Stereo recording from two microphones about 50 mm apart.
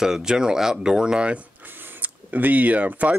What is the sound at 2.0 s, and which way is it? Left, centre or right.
Speech, right.